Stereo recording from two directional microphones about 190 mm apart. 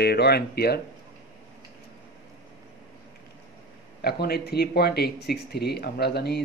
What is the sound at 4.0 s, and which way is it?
Speech, 55° left (ahead or behind).